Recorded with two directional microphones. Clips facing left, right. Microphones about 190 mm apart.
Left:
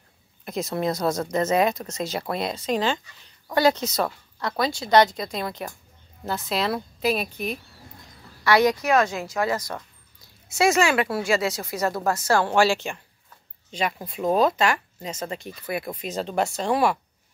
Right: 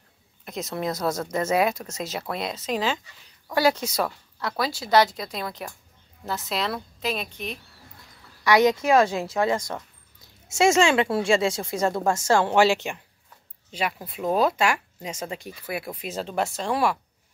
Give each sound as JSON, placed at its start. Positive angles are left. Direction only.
{"t": 0.5, "sound": "speech", "side_deg": 0}
{"t": 8.5, "sound": "speech", "side_deg": -20}
{"t": 13.7, "sound": "speech", "side_deg": -5}